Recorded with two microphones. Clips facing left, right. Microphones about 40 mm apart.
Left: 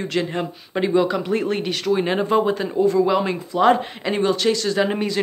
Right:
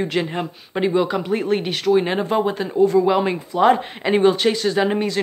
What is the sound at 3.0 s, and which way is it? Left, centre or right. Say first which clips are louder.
Speech: right 1 dB; centre.